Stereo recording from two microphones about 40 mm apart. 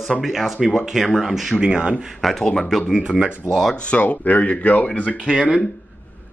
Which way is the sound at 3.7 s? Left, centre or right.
Left.